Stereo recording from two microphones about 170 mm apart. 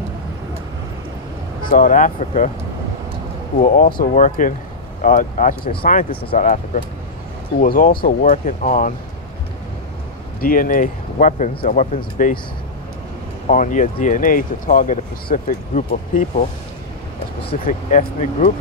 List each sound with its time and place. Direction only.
1.7 s speech: 50° left (ahead or behind)
3.5 s speech: 50° left (ahead or behind)
7.6 s speech: 60° left (ahead or behind)
10.4 s speech: 55° left (ahead or behind)
13.5 s speech: 50° left (ahead or behind)
17.6 s speech: 50° left (ahead or behind)